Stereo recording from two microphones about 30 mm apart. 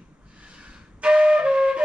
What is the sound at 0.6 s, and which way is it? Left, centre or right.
Flute, right.